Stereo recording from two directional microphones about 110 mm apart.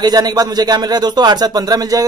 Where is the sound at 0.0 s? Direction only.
35° right (ahead or behind).